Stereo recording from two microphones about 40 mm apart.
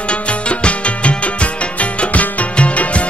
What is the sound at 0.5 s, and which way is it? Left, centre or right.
Music, left.